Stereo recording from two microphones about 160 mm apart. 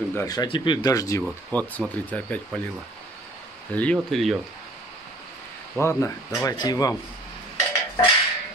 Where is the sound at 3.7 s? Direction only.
10° left (ahead or behind).